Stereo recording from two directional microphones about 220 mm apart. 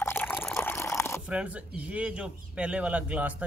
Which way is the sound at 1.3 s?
5° right (ahead or behind).